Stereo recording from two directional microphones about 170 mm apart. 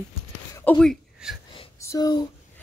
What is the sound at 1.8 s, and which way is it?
Speech, 20° left (ahead or behind).